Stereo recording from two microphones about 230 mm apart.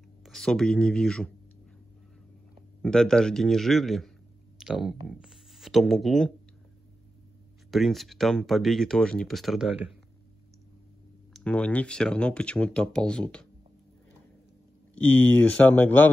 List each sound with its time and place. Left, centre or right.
0.2 s speech: centre
2.8 s speech: centre
7.7 s speech: centre
11.3 s speech: centre
15.0 s speech: centre